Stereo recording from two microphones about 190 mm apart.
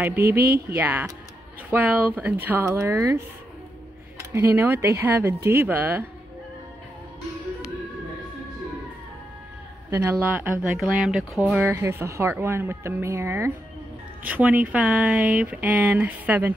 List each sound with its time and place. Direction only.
0.4 s speech: 55° right (ahead or behind)
0.7 s speech: 10° right (ahead or behind)
9.8 s speech: 15° right (ahead or behind)
11.6 s speech: 15° right (ahead or behind)